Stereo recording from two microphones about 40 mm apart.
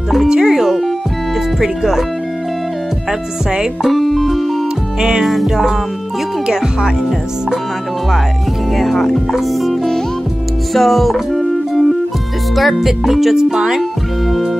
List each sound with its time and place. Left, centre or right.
0.3 s music: centre
1.6 s speech: centre
3.8 s music: centre
6.4 s speech: centre
8.7 s music: centre
12.5 s speech: centre